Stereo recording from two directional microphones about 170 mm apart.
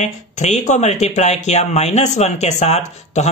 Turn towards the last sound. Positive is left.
turn(degrees=40)  # may be behind; listen again after turning